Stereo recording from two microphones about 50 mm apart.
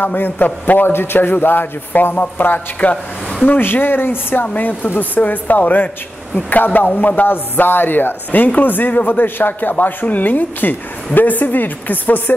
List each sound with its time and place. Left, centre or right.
0.0 s speech: left